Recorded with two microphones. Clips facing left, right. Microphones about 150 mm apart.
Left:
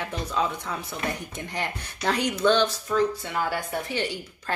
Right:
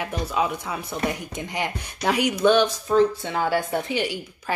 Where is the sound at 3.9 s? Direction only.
15° right (ahead or behind).